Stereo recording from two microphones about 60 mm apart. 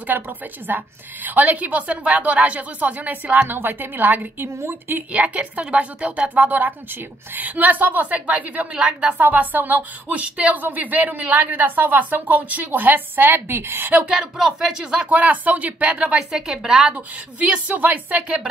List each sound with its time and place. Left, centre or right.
0.1 s a woman's voice: right
4.6 s a woman's voice: right
5.1 s a woman's voice: centre; by 13.9 s right
14.1 s speech: centre
15.0 s a woman's voice: right